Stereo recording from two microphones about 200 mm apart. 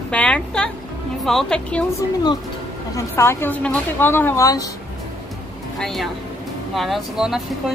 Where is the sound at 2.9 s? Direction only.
15° left (ahead or behind).